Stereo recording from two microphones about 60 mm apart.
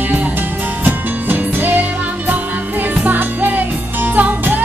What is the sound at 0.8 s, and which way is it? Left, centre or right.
Music, right.